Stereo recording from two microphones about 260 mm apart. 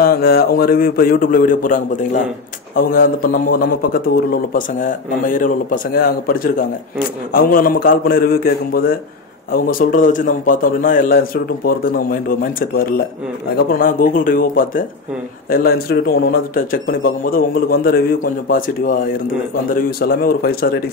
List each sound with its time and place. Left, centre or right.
0.0 s a man's voice: left